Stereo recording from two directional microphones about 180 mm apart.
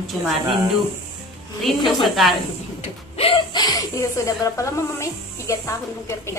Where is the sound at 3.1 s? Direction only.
30° left (ahead or behind).